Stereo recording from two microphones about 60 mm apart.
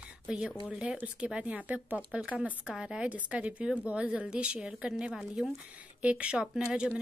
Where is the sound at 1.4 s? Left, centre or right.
Right.